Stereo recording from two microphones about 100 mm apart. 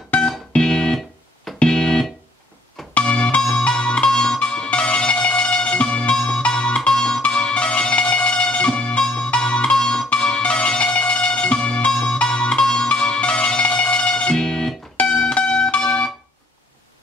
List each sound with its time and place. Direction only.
0.1 s music: 10° left (ahead or behind)